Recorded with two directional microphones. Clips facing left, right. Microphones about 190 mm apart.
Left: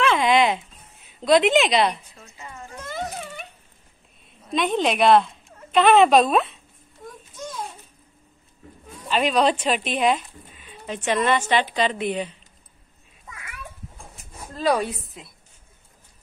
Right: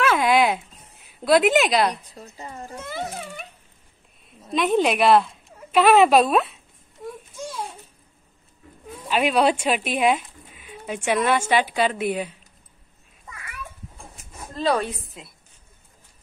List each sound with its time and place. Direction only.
0.0 s a sound: 5° right (ahead or behind)
1.2 s speech: 5° right (ahead or behind)
2.0 s a woman's voice: 35° right (ahead or behind)
2.7 s music: 5° right (ahead or behind)
4.6 s a woman's voice: 5° right (ahead or behind)
7.3 s a sound: 10° right (ahead or behind)
8.8 s speech: 5° right (ahead or behind)
14.6 s a woman's voice: 10° left (ahead or behind)